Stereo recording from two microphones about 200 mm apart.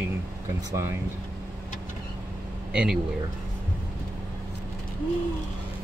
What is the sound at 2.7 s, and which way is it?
Speech, 5° right (ahead or behind).